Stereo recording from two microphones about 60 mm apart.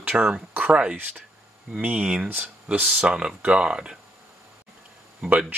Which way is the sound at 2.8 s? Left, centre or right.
Centre.